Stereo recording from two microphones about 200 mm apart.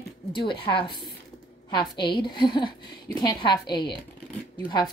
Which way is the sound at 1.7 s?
25° left (ahead or behind).